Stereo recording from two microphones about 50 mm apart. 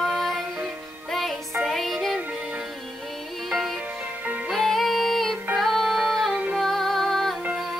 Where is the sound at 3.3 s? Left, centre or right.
Centre.